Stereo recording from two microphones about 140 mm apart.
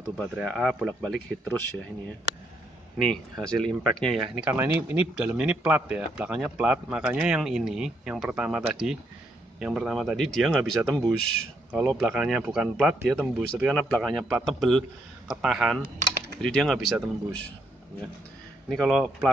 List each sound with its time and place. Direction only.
0.2 s a man's voice: centre (ahead or behind)
3.0 s a man's voice: 5° left (ahead or behind)
4.5 s a man's voice: 15° right (ahead or behind)
18.7 s a man's voice: centre (ahead or behind)